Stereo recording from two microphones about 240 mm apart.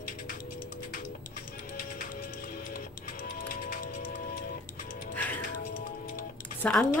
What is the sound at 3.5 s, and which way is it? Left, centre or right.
Music, left.